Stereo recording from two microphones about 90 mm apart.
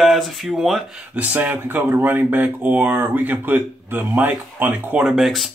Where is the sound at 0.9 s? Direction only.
20° right (ahead or behind).